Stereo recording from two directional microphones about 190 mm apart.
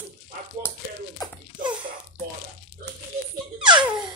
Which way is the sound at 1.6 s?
25° right (ahead or behind).